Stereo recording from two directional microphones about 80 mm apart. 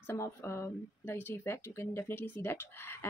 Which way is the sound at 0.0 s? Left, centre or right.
Left.